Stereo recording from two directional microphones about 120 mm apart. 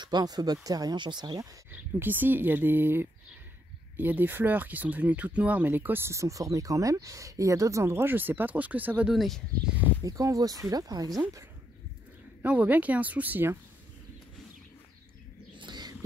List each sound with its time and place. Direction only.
0.0 s speech: 35° right (ahead or behind)
1.7 s speech: 15° right (ahead or behind)
9.1 s speech: centre (ahead or behind)
10.0 s speech: 30° right (ahead or behind)
12.4 s speech: 10° right (ahead or behind)
15.6 s wild animals: 35° right (ahead or behind)